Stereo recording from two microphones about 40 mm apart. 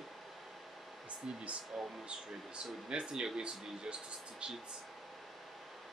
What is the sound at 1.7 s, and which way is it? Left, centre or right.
Speech, centre.